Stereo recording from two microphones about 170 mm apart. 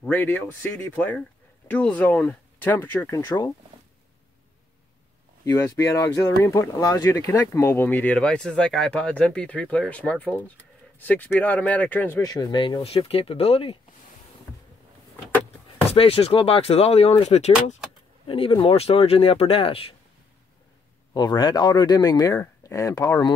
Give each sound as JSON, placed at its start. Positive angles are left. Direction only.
{"t": 0.0, "sound": "speech", "side_deg": 10}
{"t": 3.3, "sound": "speech", "side_deg": 25}
{"t": 5.4, "sound": "speech", "side_deg": 15}
{"t": 15.9, "sound": "speech", "side_deg": 35}
{"t": 21.1, "sound": "speech", "side_deg": 25}